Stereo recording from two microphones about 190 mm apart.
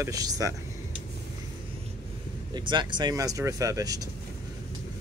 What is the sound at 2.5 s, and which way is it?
Speech, 25° right (ahead or behind).